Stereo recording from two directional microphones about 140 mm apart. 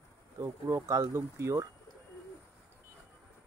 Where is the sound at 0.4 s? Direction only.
25° right (ahead or behind).